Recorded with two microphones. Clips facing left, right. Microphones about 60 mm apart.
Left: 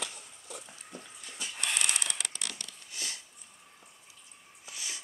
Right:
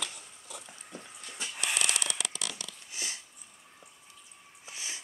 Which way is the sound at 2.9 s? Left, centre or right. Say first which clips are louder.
Right 1 dB; centre.